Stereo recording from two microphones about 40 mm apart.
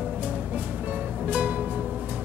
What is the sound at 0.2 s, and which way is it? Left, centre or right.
Music, right.